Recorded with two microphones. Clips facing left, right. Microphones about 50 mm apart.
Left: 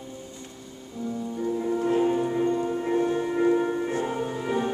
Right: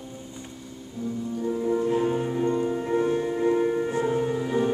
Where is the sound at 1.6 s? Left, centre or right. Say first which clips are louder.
Right 1 dB; centre.